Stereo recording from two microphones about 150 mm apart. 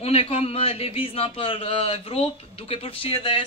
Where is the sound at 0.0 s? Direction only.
40° left (ahead or behind).